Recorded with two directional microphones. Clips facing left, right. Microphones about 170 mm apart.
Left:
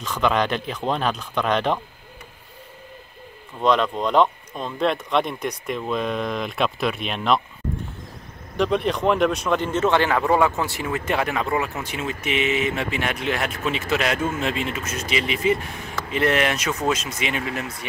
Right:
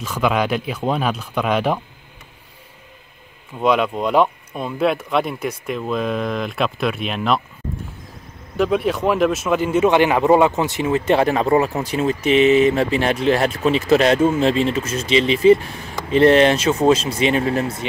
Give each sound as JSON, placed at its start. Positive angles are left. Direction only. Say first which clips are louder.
{"t": 0.0, "sound": "speech", "louder": "right 2 dB", "side_deg": -5}
{"t": 3.6, "sound": "speech", "louder": "right 2 dB", "side_deg": -5}
{"t": 8.5, "sound": "speech", "louder": "right 3 dB", "side_deg": -5}